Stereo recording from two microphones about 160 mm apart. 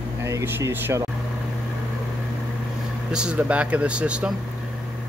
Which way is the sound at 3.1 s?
5° right (ahead or behind).